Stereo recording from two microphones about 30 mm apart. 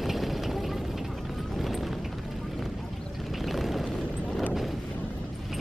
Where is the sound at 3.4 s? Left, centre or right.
Centre.